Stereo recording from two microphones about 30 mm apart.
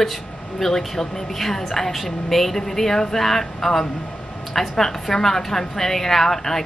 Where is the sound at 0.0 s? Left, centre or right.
Centre.